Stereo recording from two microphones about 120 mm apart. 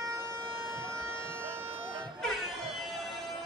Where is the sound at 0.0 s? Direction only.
20° right (ahead or behind).